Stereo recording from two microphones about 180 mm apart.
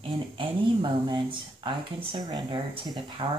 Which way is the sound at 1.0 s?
25° right (ahead or behind).